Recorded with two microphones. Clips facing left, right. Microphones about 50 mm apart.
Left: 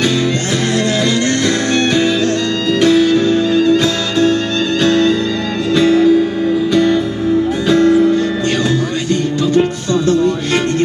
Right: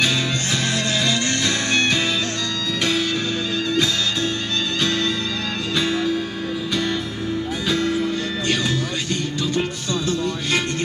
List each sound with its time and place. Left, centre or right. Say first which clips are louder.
1.4 s music: left 6 dB; left
9.1 s music: left 11 dB; left